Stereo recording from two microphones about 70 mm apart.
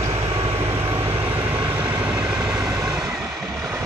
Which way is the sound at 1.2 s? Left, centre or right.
Right.